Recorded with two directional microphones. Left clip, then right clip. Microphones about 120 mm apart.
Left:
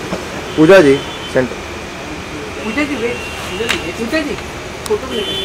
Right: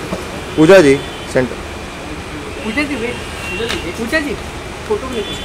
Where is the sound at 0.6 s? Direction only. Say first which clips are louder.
Even; 10° right (ahead or behind).